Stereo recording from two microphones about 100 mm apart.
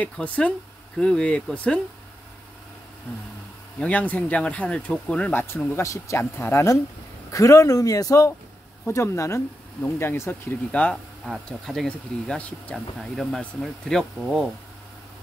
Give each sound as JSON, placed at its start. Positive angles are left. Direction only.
{"t": 0.0, "sound": "speech", "side_deg": 10}
{"t": 3.8, "sound": "speech", "side_deg": 15}
{"t": 5.8, "sound": "speech", "side_deg": 30}
{"t": 10.7, "sound": "speech", "side_deg": 15}
{"t": 11.4, "sound": "speech", "side_deg": 5}
{"t": 12.7, "sound": "speech", "side_deg": 0}